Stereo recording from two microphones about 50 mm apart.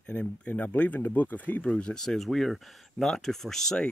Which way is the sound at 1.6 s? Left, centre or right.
Centre.